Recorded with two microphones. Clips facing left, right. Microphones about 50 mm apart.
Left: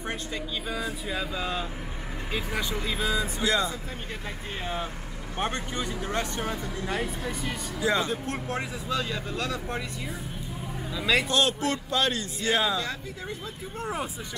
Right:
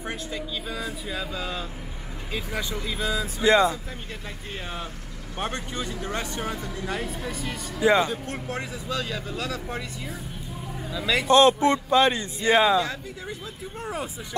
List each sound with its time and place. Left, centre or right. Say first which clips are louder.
0.0 s speech: right 1 dB; centre
3.4 s speech: right 9 dB; right
5.9 s speech: left 1 dB; centre
7.8 s speech: right 6 dB; centre
8.1 s speech: left 1 dB; centre
11.2 s a man's voice: right 8 dB; right
13.7 s speech: even; centre